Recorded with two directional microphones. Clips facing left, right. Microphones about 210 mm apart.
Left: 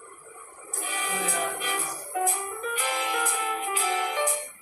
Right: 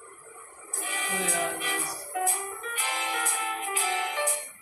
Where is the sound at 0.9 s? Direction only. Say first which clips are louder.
Even; 50° left (ahead or behind).